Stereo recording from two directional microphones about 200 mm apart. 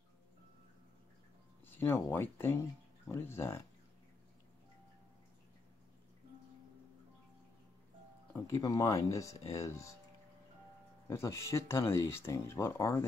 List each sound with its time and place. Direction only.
1.8 s speech: 15° left (ahead or behind)
8.3 s speech: 15° left (ahead or behind)
11.1 s speech: 15° left (ahead or behind)